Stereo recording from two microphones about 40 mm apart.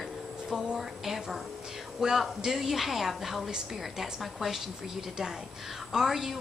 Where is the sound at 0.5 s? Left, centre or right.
Centre.